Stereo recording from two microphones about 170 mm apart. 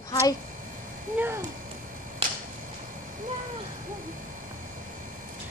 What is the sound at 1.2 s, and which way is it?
Speech, 15° right (ahead or behind).